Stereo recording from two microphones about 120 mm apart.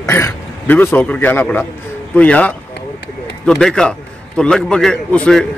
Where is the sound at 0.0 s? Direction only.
20° left (ahead or behind).